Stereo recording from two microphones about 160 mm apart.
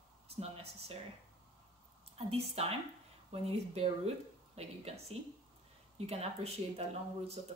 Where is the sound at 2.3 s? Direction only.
40° right (ahead or behind).